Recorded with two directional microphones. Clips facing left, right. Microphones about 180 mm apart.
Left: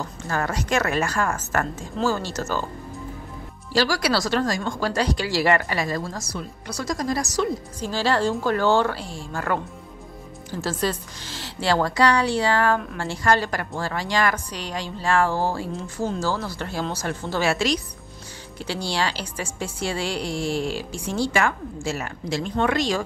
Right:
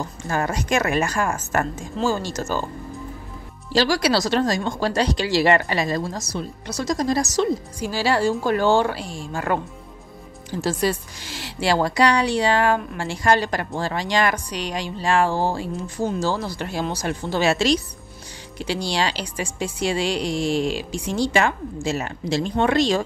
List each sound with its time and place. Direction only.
0.0 s a woman's voice: 15° right (ahead or behind)
3.7 s speech: 20° right (ahead or behind)
7.8 s a woman's voice: 10° right (ahead or behind)
10.6 s a woman's voice: 15° right (ahead or behind)